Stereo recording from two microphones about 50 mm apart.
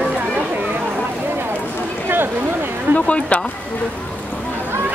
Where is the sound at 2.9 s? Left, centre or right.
Left.